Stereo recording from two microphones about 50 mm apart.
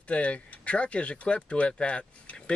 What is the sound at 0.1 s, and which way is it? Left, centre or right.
Speech, left.